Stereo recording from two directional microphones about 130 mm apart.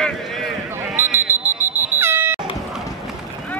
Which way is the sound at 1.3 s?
15° right (ahead or behind).